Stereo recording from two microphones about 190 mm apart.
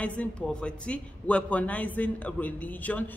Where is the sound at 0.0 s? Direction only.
5° left (ahead or behind).